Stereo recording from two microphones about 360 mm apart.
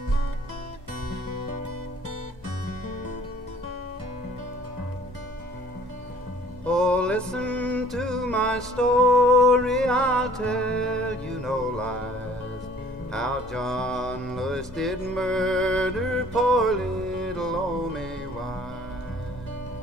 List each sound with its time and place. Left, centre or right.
6.6 s music: centre
13.1 s music: centre